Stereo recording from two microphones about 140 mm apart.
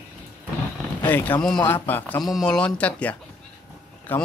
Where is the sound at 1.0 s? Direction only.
15° left (ahead or behind).